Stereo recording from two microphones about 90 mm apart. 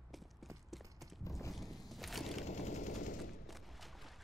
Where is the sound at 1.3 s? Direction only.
35° left (ahead or behind).